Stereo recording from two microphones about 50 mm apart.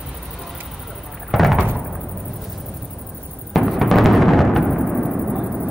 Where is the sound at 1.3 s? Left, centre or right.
Centre.